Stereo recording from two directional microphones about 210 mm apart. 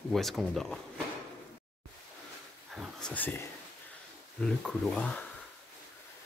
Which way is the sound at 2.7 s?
Centre (ahead or behind).